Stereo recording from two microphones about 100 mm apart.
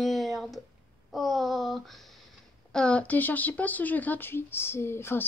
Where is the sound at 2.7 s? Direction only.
10° left (ahead or behind).